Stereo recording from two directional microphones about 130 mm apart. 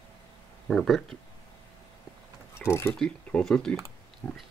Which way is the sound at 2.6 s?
20° left (ahead or behind).